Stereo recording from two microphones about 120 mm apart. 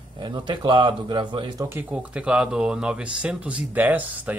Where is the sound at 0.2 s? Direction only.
40° right (ahead or behind).